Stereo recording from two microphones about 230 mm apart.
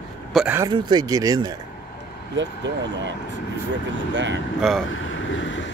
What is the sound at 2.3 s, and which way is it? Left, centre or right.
Speech, right.